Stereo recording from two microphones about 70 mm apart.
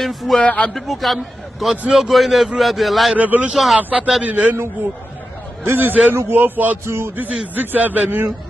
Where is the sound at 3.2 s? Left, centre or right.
Right.